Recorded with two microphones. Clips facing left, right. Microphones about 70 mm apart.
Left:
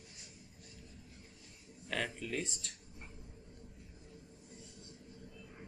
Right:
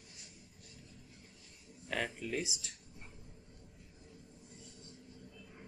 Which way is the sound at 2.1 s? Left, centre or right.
Centre.